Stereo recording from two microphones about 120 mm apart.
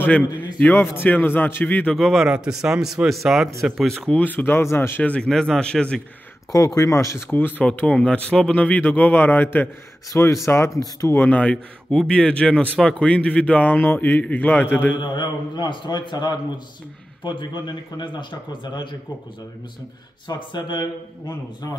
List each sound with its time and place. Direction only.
0.6 s speech: 15° left (ahead or behind)
2.0 s speech: centre (ahead or behind)
4.2 s speech: 15° left (ahead or behind)
6.5 s speech: 30° left (ahead or behind)
11.1 s speech: 10° left (ahead or behind)
15.0 s speech: 40° left (ahead or behind)
20.2 s speech: 40° left (ahead or behind)